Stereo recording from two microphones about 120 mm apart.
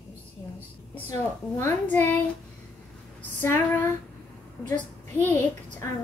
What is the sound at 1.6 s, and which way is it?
Speech, 15° left (ahead or behind).